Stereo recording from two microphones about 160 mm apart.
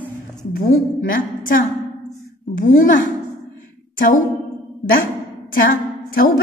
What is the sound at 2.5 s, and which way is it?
Speech, 55° left (ahead or behind).